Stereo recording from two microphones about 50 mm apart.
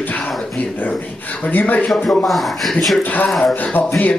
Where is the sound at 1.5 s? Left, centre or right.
Left.